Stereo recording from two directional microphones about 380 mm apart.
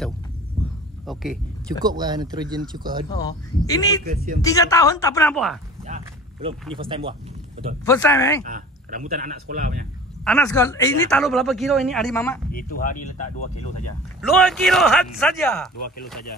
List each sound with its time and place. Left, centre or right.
0.6 s a sound: centre
1.0 s speech: centre
3.2 s speech: centre
4.0 s speech: right
4.4 s speech: centre
5.9 s a sound: centre
6.7 s speech: centre
7.8 s speech: centre
8.5 s speech: right
10.2 s speech: centre
12.4 s speech: left
14.3 s speech: centre